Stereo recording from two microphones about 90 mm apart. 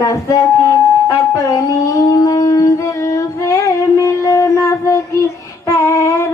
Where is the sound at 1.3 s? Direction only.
40° left (ahead or behind).